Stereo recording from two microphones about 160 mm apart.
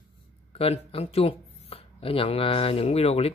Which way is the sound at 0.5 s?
40° left (ahead or behind).